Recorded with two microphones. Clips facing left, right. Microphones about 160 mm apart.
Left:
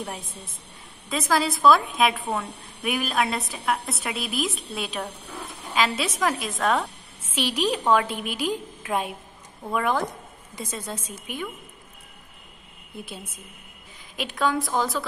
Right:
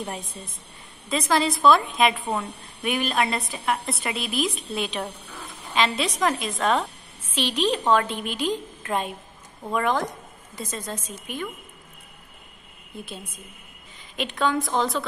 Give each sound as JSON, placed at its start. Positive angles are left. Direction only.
{"t": 0.0, "sound": "a woman's voice", "side_deg": 0}
{"t": 7.3, "sound": "a woman's voice", "side_deg": 10}
{"t": 12.9, "sound": "a woman's voice", "side_deg": -15}
{"t": 14.1, "sound": "a woman's voice", "side_deg": 5}